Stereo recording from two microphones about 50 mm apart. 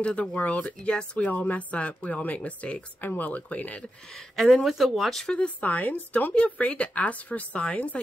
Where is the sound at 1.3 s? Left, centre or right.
Left.